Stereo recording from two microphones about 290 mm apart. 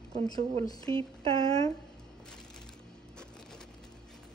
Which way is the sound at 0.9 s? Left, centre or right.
Centre.